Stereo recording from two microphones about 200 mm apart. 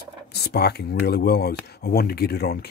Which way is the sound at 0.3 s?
55° left (ahead or behind).